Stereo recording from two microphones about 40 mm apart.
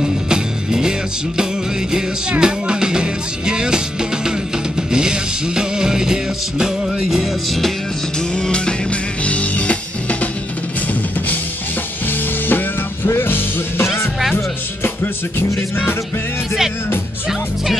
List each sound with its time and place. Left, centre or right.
0.0 s music: centre
4.9 s music: centre
8.4 s music: left
12.1 s music: left